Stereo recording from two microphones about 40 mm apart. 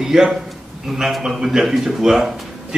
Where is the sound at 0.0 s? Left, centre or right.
Centre.